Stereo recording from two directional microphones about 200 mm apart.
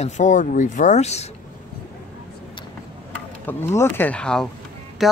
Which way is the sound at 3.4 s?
15° left (ahead or behind).